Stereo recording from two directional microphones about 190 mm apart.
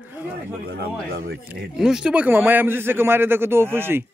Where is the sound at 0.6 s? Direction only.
55° right (ahead or behind).